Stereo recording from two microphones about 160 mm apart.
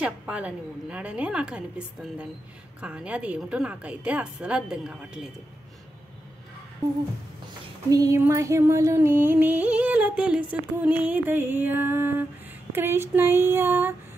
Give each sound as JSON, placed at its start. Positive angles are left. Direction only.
{"t": 0.0, "sound": "music", "side_deg": -5}
{"t": 7.9, "sound": "a sound", "side_deg": -25}
{"t": 8.2, "sound": "music", "side_deg": -15}